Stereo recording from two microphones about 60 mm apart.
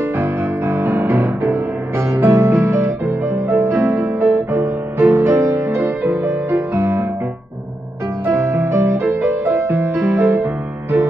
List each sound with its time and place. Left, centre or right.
0.2 s music: right
8.4 s music: right
9.0 s music: right
9.6 s music: right